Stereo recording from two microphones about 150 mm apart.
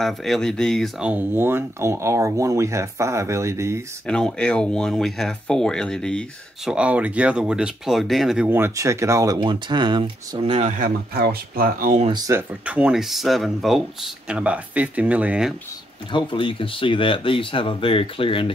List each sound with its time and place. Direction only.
0.0 s speech: centre (ahead or behind); by 3.8 s 20° right (ahead or behind)
4.1 s speech: 5° left (ahead or behind)
6.7 s speech: 10° right (ahead or behind)
8.5 s speech: 15° right (ahead or behind); by 10.7 s 40° right (ahead or behind)
10.8 s speech: 85° right
12.1 s speech: 20° right (ahead or behind)
12.6 s speech: 10° right (ahead or behind)
16.1 s speech: 35° left (ahead or behind)